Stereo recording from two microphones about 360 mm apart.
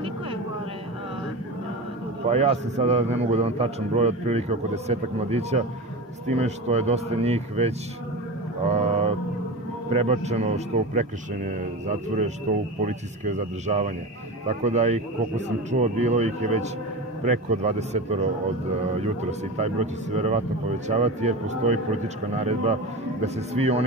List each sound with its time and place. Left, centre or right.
2.2 s a man's voice: centre
9.8 s a man's voice: centre
12.8 s a man's voice: centre
19.5 s a man's voice: centre